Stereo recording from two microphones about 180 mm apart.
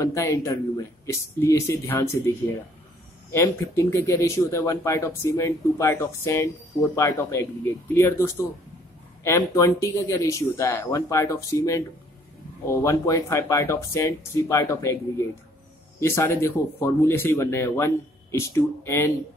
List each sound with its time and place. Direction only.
0.0 s speech: 15° left (ahead or behind)
3.3 s speech: 15° left (ahead or behind)